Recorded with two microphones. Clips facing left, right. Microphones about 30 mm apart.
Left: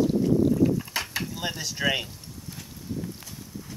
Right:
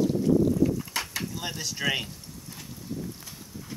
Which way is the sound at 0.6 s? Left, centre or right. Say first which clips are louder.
Left 2 dB; centre.